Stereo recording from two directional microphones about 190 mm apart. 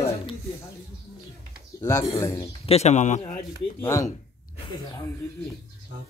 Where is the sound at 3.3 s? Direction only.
15° left (ahead or behind).